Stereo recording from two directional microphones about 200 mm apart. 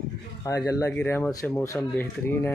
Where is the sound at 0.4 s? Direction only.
15° left (ahead or behind).